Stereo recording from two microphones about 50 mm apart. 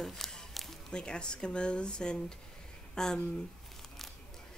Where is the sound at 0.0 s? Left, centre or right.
Centre.